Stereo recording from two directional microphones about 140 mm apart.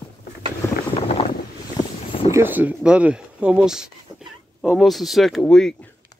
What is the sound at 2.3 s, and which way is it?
Speech, 15° right (ahead or behind).